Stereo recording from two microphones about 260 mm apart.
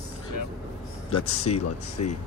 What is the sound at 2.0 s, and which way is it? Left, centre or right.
Speech, left.